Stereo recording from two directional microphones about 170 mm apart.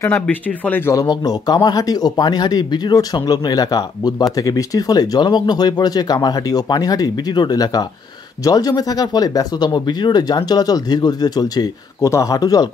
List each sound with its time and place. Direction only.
0.0 s speech: 10° left (ahead or behind)